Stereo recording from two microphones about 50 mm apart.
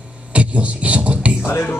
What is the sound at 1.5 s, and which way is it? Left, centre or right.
Speech, left.